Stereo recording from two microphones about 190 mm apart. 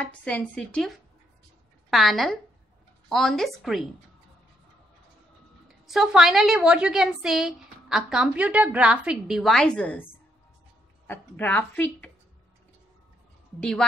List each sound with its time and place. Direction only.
0.0 s a woman's voice: 5° left (ahead or behind)
5.9 s a woman's voice: centre (ahead or behind)
11.1 s speech: 10° left (ahead or behind)
13.6 s a woman's voice: 5° left (ahead or behind)